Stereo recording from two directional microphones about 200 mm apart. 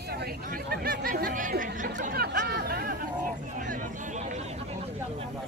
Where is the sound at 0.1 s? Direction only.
50° right (ahead or behind).